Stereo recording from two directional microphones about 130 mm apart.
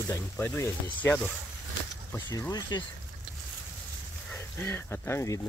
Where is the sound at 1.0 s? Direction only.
15° left (ahead or behind).